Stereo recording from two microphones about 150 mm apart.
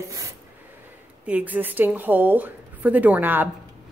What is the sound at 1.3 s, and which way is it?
A woman's voice, 10° right (ahead or behind).